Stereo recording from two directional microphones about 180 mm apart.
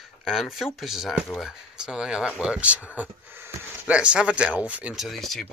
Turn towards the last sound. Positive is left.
turn(degrees=0)  # may be behind; listen again after turning